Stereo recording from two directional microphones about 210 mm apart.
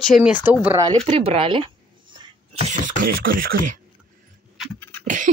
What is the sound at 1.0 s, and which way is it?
Speech, 30° right (ahead or behind).